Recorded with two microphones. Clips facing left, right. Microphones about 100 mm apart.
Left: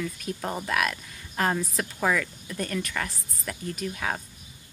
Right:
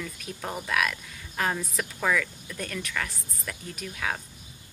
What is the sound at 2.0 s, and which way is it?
Speech, 15° left (ahead or behind).